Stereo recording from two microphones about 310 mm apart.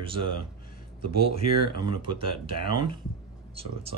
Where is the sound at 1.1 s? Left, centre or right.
Right.